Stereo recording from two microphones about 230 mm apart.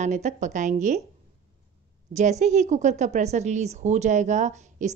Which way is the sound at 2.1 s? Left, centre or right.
Right.